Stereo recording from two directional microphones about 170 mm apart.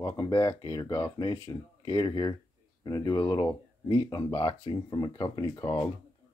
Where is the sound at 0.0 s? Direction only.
20° left (ahead or behind).